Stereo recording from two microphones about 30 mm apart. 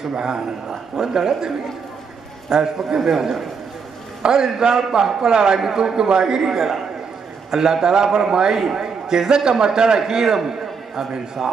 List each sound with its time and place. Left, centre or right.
0.1 s a man's voice: right
2.5 s a man's voice: right
4.2 s a man's voice: right